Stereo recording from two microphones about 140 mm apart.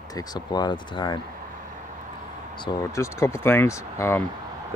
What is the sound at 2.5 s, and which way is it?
Speech, 35° left (ahead or behind).